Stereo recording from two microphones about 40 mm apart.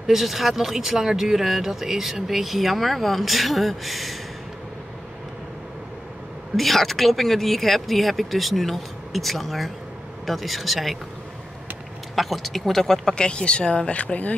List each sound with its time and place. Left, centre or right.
0.0 s speech: centre
6.5 s speech: centre
12.2 s speech: centre
13.1 s speech: left